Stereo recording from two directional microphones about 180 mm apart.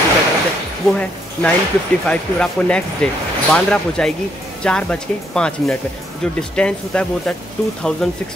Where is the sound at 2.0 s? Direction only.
5° left (ahead or behind).